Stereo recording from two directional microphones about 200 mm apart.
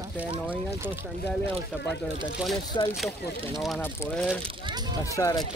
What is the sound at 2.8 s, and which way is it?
Speech, 20° left (ahead or behind).